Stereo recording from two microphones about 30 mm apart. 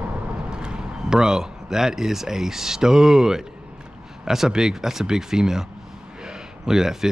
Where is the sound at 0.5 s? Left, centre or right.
Right.